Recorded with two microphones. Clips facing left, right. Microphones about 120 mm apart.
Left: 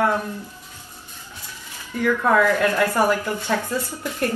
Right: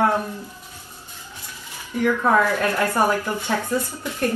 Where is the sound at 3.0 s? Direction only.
15° right (ahead or behind).